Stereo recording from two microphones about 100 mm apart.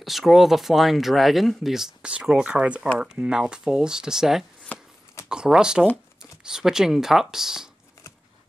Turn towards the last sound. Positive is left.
turn(degrees=-5)  # may be behind; listen again after turning